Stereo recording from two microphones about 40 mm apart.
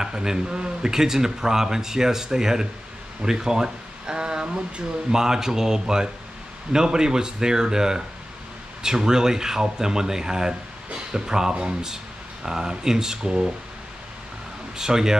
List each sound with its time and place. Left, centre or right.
0.0 s speech: centre
14.8 s speech: centre